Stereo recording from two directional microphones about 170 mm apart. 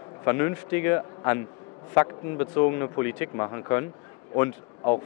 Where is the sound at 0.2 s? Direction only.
15° left (ahead or behind).